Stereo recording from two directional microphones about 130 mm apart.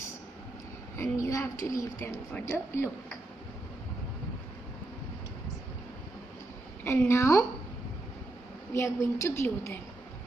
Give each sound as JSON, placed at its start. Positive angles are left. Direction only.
{"t": 1.1, "sound": "a sound", "side_deg": 20}
{"t": 2.0, "sound": "a woman's voice", "side_deg": 15}
{"t": 6.8, "sound": "a woman's voice", "side_deg": 20}
{"t": 8.7, "sound": "a woman's voice", "side_deg": 20}